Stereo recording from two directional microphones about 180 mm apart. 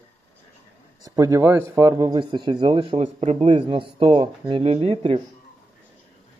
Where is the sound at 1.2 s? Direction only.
15° right (ahead or behind).